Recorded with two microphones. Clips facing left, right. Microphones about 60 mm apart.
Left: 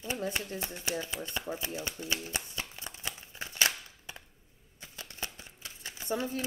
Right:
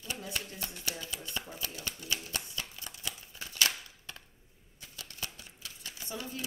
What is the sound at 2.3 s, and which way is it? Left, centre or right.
Shuffling cards, left.